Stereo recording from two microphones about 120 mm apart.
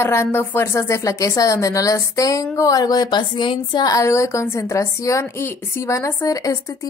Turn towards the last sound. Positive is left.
turn(degrees=30)  # may be behind; listen again after turning